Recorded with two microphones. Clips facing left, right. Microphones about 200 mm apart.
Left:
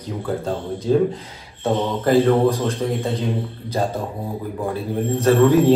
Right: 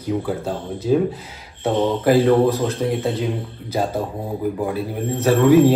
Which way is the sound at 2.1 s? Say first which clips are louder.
Even; 10° right (ahead or behind).